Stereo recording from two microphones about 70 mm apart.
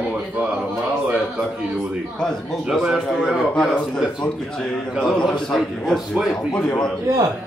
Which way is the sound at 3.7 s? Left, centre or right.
Centre.